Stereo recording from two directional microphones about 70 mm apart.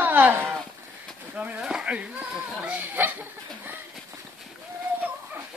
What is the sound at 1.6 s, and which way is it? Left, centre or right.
Chicken, centre.